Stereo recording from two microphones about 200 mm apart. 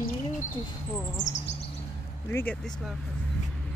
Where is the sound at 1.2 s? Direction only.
35° left (ahead or behind).